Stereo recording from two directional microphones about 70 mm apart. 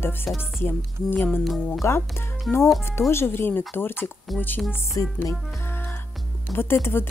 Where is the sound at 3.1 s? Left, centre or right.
Left.